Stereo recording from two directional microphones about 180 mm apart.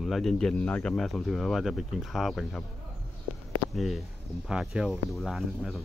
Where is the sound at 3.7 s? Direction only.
Centre (ahead or behind).